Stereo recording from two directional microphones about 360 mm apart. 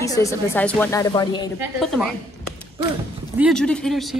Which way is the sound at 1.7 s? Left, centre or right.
Centre.